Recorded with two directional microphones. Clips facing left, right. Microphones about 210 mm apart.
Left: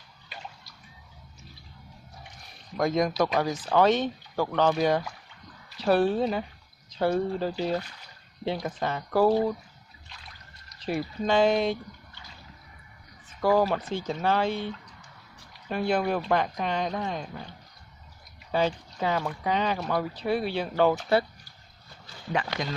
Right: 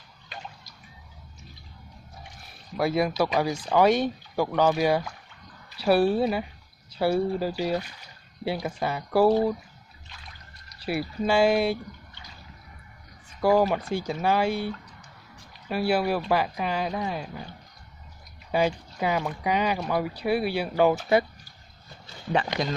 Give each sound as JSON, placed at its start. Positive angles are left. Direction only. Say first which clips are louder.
{"t": 2.8, "sound": "speech", "louder": "even", "side_deg": -10}
{"t": 10.8, "sound": "speech", "louder": "right 1 dB", "side_deg": -10}
{"t": 13.4, "sound": "speech", "louder": "right 2 dB", "side_deg": -15}
{"t": 15.7, "sound": "speech", "louder": "right 2 dB", "side_deg": -10}
{"t": 18.5, "sound": "speech", "louder": "right 2 dB", "side_deg": -10}
{"t": 22.0, "sound": "a sound", "louder": "right 4 dB", "side_deg": -30}